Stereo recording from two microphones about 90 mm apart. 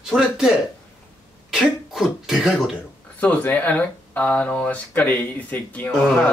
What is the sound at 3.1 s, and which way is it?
Speech, 15° left (ahead or behind).